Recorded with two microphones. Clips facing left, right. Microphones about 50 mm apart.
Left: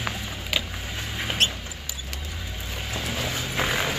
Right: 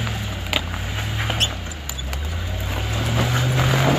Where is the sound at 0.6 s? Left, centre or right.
Right.